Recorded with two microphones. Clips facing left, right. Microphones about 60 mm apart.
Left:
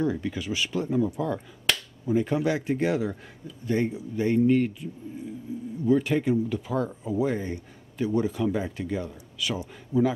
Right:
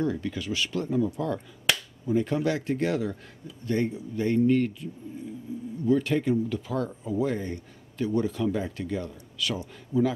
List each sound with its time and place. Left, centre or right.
0.0 s speech: centre
1.7 s finger snapping: centre
2.0 s speech: centre
5.9 s speech: centre